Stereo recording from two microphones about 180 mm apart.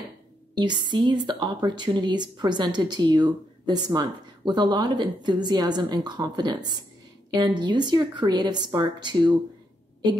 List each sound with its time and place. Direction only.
0.6 s a woman's voice: 25° right (ahead or behind)